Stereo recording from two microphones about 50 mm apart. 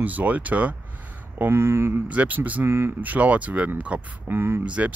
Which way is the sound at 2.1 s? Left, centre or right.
Right.